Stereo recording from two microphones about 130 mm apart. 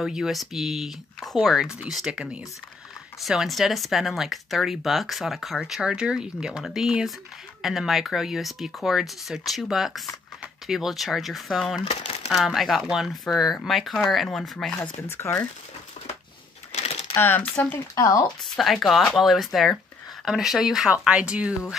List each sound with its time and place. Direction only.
0.0 s speech: 5° right (ahead or behind)
11.8 s crumpling: 50° left (ahead or behind)
12.3 s speech: centre (ahead or behind)
15.0 s speech: 20° left (ahead or behind)
17.1 s speech: 15° left (ahead or behind)
17.9 s speech: 25° left (ahead or behind)
18.6 s speech: centre (ahead or behind)